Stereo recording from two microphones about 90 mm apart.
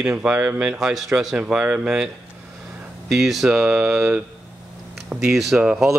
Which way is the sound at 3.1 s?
5° right (ahead or behind).